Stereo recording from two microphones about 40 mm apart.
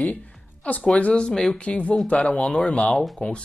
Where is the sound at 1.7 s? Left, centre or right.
Left.